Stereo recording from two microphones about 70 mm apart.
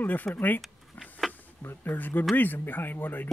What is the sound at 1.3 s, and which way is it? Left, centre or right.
Speech, left.